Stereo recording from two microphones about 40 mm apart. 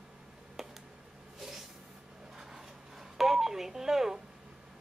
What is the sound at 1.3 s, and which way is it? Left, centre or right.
Vehicle, centre.